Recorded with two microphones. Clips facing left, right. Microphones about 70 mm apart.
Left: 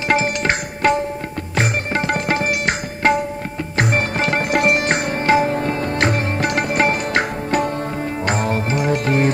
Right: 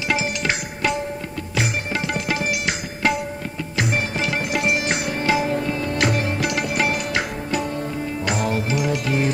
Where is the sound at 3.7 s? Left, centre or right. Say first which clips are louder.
Left 4 dB; left.